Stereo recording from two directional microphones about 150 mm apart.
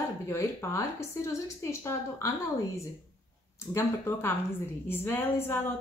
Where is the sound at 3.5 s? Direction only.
15° left (ahead or behind).